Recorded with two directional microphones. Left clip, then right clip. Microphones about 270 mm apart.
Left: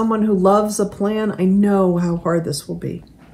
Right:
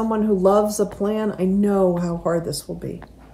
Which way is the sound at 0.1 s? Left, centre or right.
Centre.